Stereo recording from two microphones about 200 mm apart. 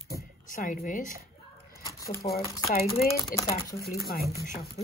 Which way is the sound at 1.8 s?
15° left (ahead or behind).